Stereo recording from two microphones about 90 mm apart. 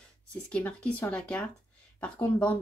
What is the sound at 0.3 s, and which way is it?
Speech, 15° left (ahead or behind).